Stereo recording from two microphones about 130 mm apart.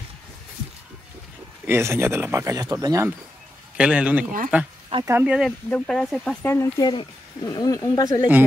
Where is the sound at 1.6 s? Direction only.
20° right (ahead or behind).